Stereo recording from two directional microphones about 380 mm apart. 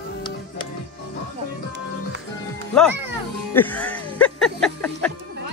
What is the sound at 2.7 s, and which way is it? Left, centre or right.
Speech, centre.